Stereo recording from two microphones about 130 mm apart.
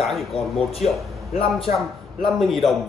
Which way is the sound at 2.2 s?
Centre (ahead or behind).